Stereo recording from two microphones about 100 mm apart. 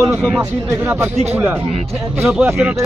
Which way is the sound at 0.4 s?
30° right (ahead or behind).